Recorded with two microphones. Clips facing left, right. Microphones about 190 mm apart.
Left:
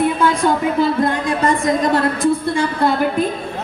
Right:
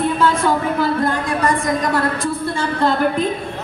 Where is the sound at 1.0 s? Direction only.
20° left (ahead or behind).